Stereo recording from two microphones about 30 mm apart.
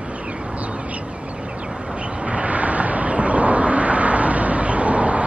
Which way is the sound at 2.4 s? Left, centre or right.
Right.